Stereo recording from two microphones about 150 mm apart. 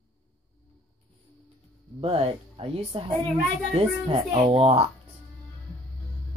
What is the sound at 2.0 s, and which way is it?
Speech, 40° right (ahead or behind).